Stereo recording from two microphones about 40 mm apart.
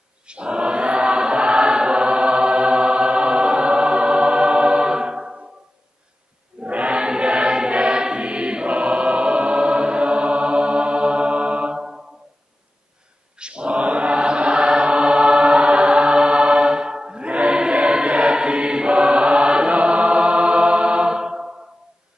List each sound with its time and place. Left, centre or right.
0.3 s choir: right
6.6 s choir: right
11.7 s a sound: centre
13.4 s mantra: right
17.7 s choir: right